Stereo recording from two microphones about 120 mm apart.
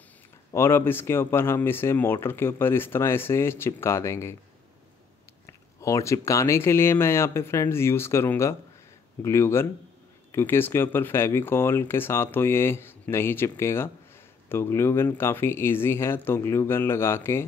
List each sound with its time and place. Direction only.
0.5 s speech: 20° left (ahead or behind)
5.5 s speech: 25° left (ahead or behind)